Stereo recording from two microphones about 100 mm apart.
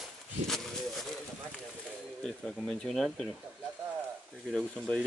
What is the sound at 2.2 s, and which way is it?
Speech, 5° left (ahead or behind).